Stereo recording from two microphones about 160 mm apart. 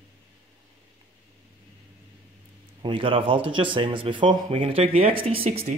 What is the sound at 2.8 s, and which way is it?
Speech, 35° right (ahead or behind).